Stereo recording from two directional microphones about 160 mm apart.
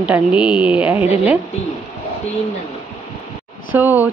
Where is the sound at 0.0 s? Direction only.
5° right (ahead or behind).